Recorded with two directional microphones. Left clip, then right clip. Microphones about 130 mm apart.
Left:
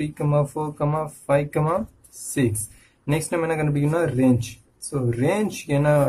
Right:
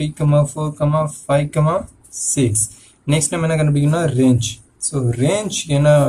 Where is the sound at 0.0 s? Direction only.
60° left (ahead or behind).